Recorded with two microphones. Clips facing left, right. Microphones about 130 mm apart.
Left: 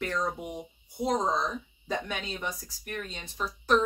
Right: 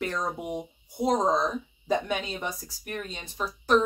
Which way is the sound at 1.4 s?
15° right (ahead or behind).